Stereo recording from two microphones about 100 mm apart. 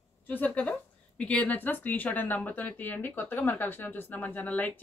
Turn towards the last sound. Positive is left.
turn(degrees=15)  # may be behind; listen again after turning